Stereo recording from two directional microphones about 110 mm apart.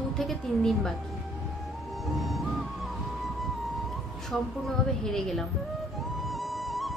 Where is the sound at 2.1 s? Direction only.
Centre (ahead or behind).